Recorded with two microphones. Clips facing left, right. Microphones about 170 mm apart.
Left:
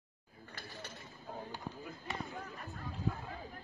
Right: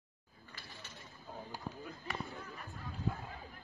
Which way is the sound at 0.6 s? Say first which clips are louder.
Left 6 dB; 45° left (ahead or behind).